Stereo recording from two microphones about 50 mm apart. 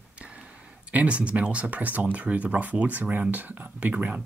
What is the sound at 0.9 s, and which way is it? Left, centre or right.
Speech, right.